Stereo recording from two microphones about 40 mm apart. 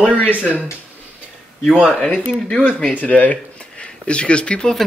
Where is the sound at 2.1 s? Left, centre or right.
Right.